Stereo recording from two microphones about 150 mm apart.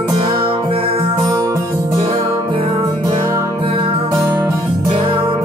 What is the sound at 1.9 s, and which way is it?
Music, 35° right (ahead or behind).